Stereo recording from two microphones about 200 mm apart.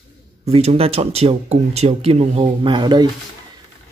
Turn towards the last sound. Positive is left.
turn(degrees=-20)  # may be behind; listen again after turning